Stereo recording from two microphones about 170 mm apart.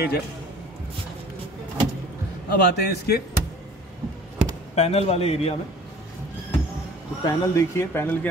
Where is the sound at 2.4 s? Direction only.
70° left (ahead or behind).